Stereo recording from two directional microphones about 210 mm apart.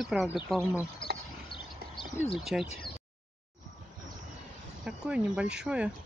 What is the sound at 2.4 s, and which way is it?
Speech, centre (ahead or behind).